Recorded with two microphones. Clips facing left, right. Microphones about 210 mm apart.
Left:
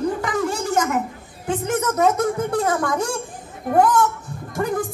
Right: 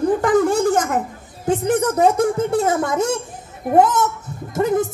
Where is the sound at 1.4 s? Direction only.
40° right (ahead or behind).